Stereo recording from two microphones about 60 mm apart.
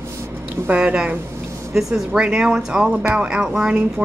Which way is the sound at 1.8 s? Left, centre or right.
Centre.